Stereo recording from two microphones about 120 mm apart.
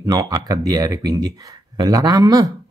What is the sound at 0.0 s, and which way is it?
Speech, 35° right (ahead or behind).